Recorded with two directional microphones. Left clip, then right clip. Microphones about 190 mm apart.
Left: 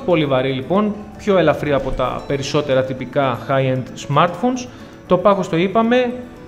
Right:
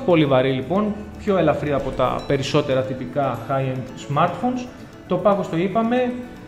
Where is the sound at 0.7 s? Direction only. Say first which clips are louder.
Left 4 dB; 15° left (ahead or behind).